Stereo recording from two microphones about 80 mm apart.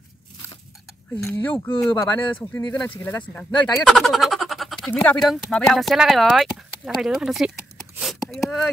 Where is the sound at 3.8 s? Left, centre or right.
Centre.